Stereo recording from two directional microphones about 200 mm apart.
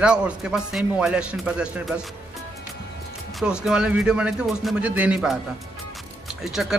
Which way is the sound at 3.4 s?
5° right (ahead or behind).